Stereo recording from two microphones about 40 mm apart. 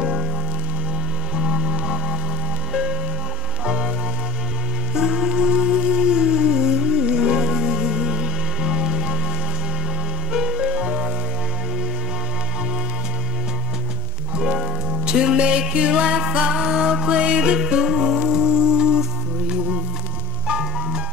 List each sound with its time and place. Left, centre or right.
0.0 s music: centre
1.3 s music: centre
4.9 s music: centre
10.3 s music: centre
15.0 s music: right
20.4 s music: right